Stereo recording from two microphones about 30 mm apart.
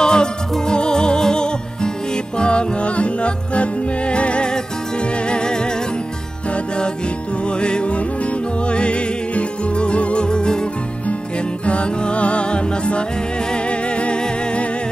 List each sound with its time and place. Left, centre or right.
0.0 s music: left
7.4 s music: left
10.2 s music: left
11.6 s music: left